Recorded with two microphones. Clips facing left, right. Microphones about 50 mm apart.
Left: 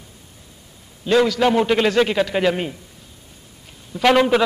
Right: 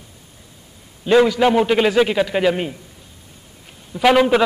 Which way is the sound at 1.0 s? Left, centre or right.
Centre.